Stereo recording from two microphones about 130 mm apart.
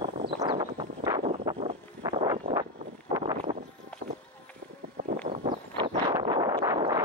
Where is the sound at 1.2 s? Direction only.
45° right (ahead or behind).